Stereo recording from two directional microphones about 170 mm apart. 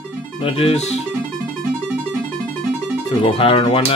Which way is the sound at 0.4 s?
35° left (ahead or behind).